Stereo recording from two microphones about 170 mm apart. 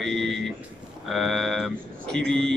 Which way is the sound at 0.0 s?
Centre (ahead or behind).